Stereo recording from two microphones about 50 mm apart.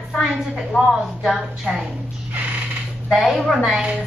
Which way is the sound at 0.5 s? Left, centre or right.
Centre.